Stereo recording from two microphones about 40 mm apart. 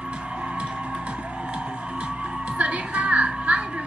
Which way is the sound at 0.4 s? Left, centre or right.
Right.